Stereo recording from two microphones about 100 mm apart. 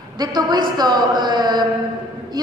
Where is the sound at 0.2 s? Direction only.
45° right (ahead or behind).